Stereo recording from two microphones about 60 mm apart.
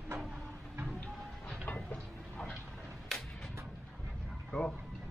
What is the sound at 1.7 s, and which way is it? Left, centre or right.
Vehicle, left.